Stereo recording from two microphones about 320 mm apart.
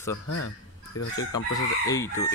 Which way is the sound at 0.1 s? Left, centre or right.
Left.